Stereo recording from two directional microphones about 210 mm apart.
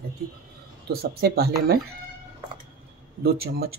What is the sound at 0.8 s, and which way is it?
Speech, 50° right (ahead or behind).